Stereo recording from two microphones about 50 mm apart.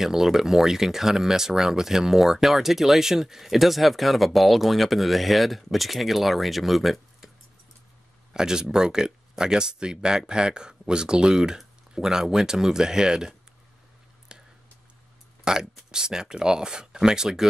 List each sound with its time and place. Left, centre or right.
0.0 s speech: centre
8.3 s speech: centre
14.3 s a sound: centre
15.4 s speech: centre